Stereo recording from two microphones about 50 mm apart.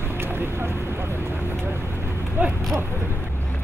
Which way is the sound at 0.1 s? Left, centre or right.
Right.